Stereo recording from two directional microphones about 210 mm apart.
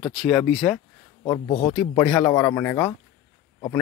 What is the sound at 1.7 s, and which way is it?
Speech, 5° left (ahead or behind).